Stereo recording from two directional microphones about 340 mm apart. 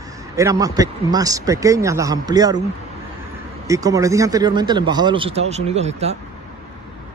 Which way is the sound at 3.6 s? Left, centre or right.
Centre.